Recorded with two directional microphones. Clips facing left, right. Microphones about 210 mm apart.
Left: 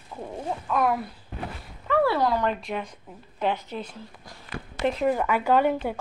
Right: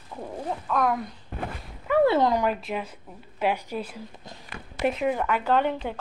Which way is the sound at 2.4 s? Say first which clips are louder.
Right 1 dB; 5° right (ahead or behind).